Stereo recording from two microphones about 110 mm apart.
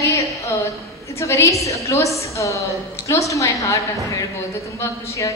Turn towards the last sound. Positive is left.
turn(degrees=30)  # may be behind; listen again after turning